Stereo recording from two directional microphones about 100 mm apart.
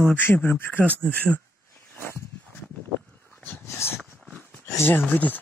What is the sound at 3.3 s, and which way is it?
Dog, 20° left (ahead or behind).